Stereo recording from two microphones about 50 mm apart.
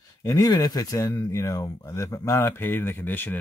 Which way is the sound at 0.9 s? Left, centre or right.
Left.